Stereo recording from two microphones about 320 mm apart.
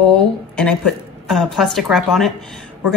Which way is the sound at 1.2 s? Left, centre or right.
Centre.